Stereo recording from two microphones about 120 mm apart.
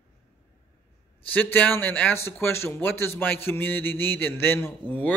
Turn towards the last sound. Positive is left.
turn(degrees=15)  # may be behind; listen again after turning